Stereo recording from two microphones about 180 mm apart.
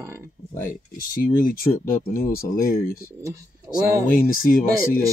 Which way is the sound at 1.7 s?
55° left (ahead or behind).